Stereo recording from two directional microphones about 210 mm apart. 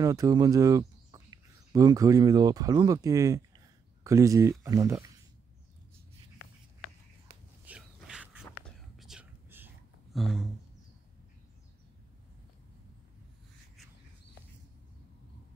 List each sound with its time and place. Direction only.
0.0 s speech: 15° right (ahead or behind)
7.6 s a sound: 5° right (ahead or behind)
9.0 s whispering: 5° right (ahead or behind)
10.1 s speech: centre (ahead or behind)